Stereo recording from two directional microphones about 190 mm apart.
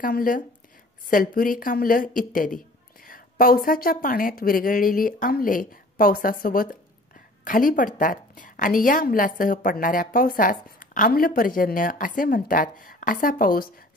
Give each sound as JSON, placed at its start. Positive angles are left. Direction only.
{"t": 0.0, "sound": "a woman's voice", "side_deg": 45}